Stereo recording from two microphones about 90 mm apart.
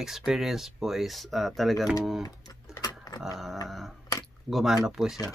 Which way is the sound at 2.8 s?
50° left (ahead or behind).